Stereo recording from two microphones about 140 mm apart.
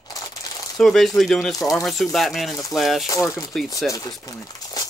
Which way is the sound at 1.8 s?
Centre (ahead or behind).